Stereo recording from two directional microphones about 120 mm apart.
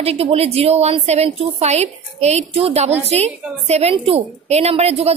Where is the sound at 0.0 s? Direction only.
55° right (ahead or behind).